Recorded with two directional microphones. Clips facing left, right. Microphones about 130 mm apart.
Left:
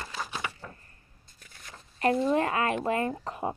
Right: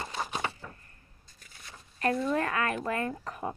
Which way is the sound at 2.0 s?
25° left (ahead or behind).